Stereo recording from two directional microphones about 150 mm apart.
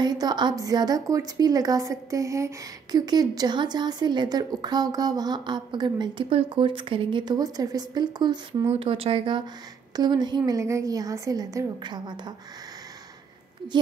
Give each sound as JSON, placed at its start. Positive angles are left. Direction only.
{"t": 0.0, "sound": "a woman's voice", "side_deg": -30}